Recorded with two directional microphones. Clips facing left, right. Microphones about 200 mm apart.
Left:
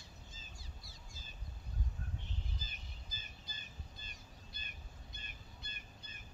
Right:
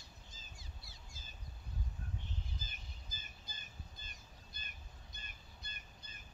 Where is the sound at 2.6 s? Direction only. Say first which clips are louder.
Left 1 dB; 50° right (ahead or behind).